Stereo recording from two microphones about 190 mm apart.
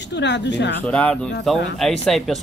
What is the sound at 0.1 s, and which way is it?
Speech, 65° left (ahead or behind).